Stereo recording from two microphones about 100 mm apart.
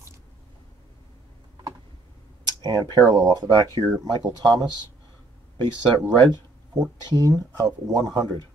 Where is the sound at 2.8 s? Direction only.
45° right (ahead or behind).